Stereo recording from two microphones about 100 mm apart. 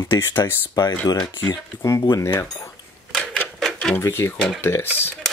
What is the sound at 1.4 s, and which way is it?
Speech, 30° left (ahead or behind).